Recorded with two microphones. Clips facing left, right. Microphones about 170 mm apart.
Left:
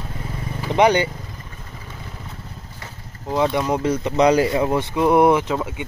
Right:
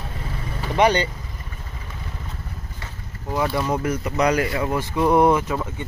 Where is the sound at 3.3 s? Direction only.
20° left (ahead or behind).